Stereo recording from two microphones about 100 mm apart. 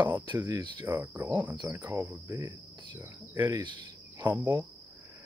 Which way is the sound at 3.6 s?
50° right (ahead or behind).